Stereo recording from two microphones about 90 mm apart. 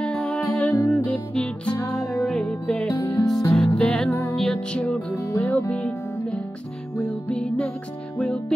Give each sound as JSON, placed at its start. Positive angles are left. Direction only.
{"t": 0.0, "sound": "music", "side_deg": 10}
{"t": 3.2, "sound": "music", "side_deg": 45}
{"t": 3.5, "sound": "music", "side_deg": 5}